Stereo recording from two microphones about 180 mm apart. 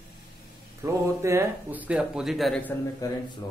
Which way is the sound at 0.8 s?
15° right (ahead or behind).